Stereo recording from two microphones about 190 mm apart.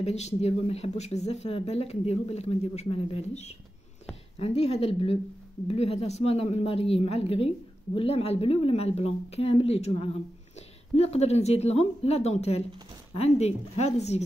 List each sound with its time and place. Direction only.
0.0 s a woman's voice: 35° left (ahead or behind)